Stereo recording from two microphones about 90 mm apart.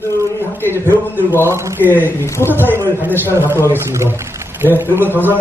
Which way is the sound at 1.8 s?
25° left (ahead or behind).